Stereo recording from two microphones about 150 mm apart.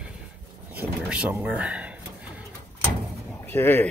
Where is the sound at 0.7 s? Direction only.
10° right (ahead or behind).